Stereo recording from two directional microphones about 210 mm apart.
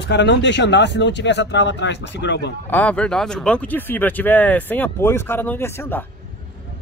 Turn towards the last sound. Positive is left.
turn(degrees=10)  # may be behind; listen again after turning